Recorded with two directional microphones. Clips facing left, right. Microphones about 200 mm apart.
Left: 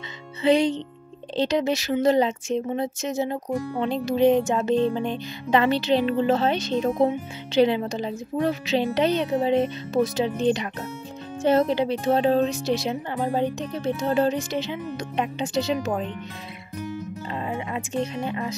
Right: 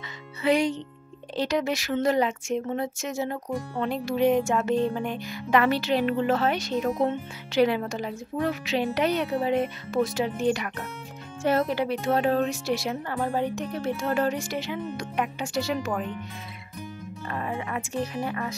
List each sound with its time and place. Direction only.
0.4 s speech: 25° left (ahead or behind)
17.3 s speech: 20° left (ahead or behind)